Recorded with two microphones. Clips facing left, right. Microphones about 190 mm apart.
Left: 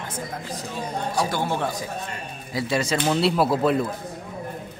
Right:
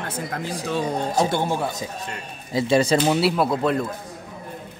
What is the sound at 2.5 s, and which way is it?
Speech, 25° right (ahead or behind).